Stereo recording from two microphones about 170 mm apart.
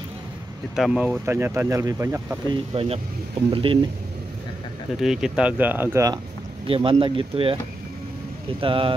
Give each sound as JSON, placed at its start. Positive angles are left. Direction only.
{"t": 0.7, "sound": "speech", "side_deg": -5}
{"t": 2.4, "sound": "speech", "side_deg": -30}
{"t": 4.9, "sound": "speech", "side_deg": -5}
{"t": 6.7, "sound": "speech", "side_deg": -30}
{"t": 8.5, "sound": "speech", "side_deg": -30}